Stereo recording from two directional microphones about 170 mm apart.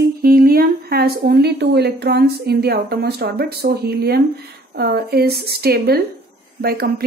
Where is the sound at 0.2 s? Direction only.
60° right (ahead or behind).